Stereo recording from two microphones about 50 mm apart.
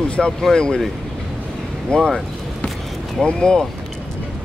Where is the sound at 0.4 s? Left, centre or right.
Centre.